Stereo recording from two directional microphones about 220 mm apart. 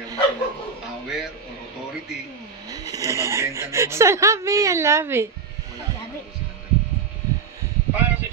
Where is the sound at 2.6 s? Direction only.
15° right (ahead or behind).